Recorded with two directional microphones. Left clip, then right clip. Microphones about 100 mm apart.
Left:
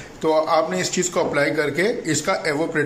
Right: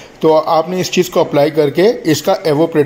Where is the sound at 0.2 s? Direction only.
25° right (ahead or behind).